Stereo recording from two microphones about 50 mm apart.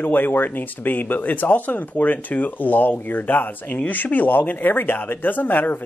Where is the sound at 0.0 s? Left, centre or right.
Left.